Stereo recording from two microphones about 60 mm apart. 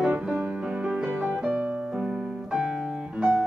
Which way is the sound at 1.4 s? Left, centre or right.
Right.